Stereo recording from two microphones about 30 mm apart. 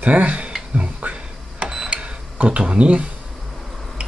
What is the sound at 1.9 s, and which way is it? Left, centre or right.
Cash register, right.